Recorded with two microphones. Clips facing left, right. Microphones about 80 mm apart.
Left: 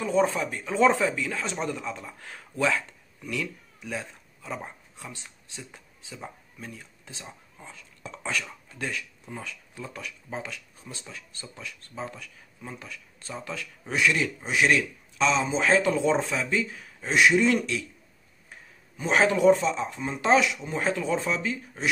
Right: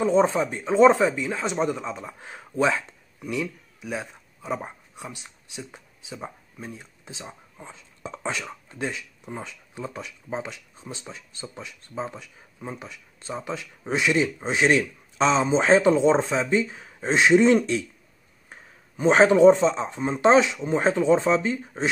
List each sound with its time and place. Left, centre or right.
0.0 s speech: right